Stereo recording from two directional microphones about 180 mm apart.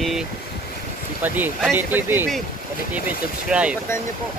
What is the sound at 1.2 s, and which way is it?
Speech, 10° right (ahead or behind).